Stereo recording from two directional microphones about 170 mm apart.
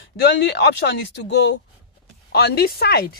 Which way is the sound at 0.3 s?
90° left.